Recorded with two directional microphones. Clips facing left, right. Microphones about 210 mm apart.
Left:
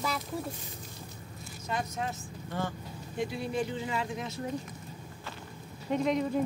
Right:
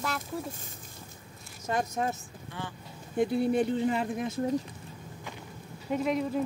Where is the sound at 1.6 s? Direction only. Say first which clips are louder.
Right 4 dB; 45° right (ahead or behind).